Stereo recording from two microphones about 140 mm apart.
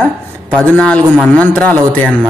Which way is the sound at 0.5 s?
10° left (ahead or behind).